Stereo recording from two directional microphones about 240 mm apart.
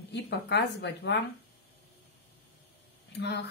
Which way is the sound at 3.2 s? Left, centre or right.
Left.